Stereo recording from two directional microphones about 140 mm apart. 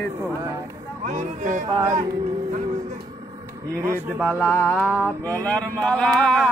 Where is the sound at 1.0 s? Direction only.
60° right (ahead or behind).